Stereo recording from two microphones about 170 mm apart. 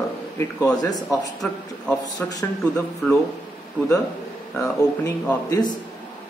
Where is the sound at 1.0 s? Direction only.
5° left (ahead or behind).